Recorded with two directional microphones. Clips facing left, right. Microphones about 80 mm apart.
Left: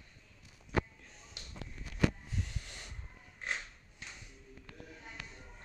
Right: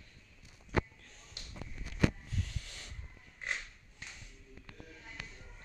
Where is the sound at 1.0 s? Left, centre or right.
Centre.